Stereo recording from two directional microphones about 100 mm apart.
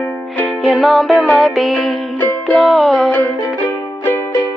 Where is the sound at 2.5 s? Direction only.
Centre (ahead or behind).